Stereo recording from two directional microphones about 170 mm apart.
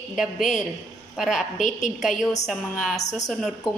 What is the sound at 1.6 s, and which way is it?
Speech, 45° left (ahead or behind).